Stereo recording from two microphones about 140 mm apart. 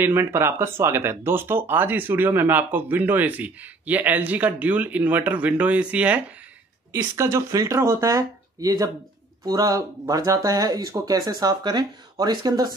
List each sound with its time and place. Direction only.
0.0 s speech: 15° right (ahead or behind)
6.9 s speech: 20° right (ahead or behind)